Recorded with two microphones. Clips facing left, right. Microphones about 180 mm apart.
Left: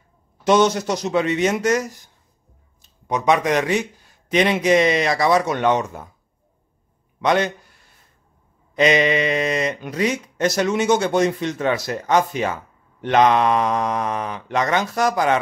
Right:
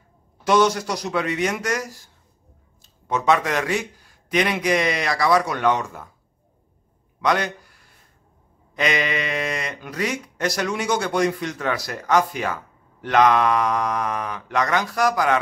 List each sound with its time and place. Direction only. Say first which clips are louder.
0.4 s speech: left 2 dB; 20° left (ahead or behind)
7.2 s a man's voice: left 3 dB; 25° left (ahead or behind)
8.7 s speech: left 6 dB; 20° left (ahead or behind)